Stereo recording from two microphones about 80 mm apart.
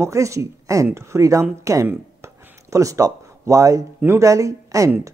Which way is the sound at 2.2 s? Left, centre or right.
Right.